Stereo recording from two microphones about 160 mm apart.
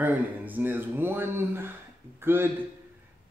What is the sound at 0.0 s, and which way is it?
A man's voice, 10° right (ahead or behind).